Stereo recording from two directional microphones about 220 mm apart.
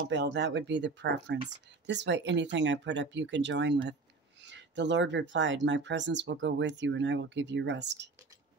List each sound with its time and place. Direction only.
0.1 s speech: 55° right (ahead or behind)